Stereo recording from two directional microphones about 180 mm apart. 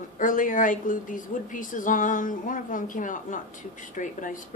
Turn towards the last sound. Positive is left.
turn(degrees=45)  # may be behind; listen again after turning